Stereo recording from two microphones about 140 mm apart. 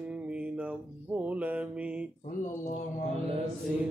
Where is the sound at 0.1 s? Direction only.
10° right (ahead or behind).